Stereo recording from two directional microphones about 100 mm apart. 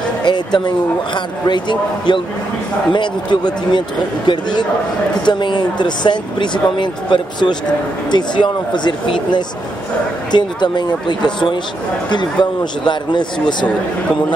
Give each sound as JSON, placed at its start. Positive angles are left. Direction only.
{"t": 0.2, "sound": "speech", "side_deg": 50}